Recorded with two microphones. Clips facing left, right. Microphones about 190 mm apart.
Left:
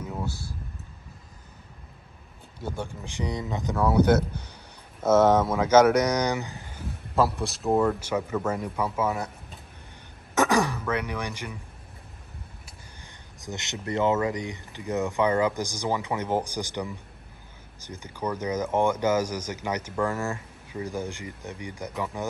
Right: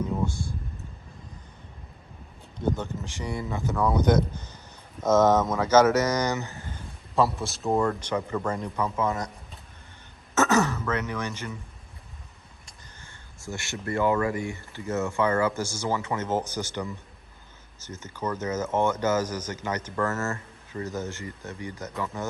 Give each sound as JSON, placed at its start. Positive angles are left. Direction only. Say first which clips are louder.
{"t": 0.2, "sound": "a sound", "louder": "right 4 dB", "side_deg": 5}
{"t": 2.6, "sound": "speech", "louder": "right 5 dB", "side_deg": 10}
{"t": 10.3, "sound": "throat clearing", "louder": "even", "side_deg": 15}
{"t": 13.0, "sound": "speech", "louder": "right 1 dB", "side_deg": 20}